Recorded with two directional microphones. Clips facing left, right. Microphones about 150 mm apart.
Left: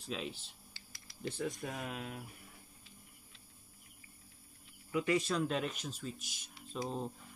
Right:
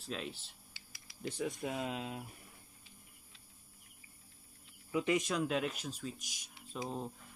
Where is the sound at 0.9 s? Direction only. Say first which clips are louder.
Even; 10° right (ahead or behind).